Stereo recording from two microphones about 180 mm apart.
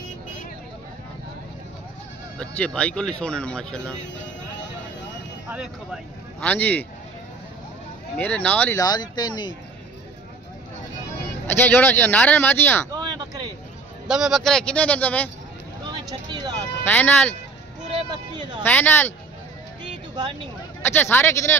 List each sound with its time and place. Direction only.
2.3 s speech: 5° left (ahead or behind)
5.5 s speech: 5° right (ahead or behind)
6.4 s speech: 10° left (ahead or behind)
8.2 s speech: 10° left (ahead or behind)
8.8 s speech: 20° left (ahead or behind)
11.4 s speech: 10° left (ahead or behind)
12.9 s a sound: 20° right (ahead or behind)
14.0 s speech: centre (ahead or behind)
15.9 s vehicle: 25° right (ahead or behind)
16.8 s speech: 10° left (ahead or behind)
18.1 s a sound: 25° right (ahead or behind)
18.6 s speech: 10° left (ahead or behind)
19.8 s music: 25° right (ahead or behind)
20.8 s speech: 10° left (ahead or behind)